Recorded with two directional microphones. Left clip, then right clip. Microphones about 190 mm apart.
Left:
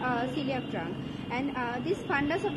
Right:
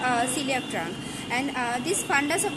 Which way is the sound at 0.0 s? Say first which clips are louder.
Right 5 dB; 25° right (ahead or behind).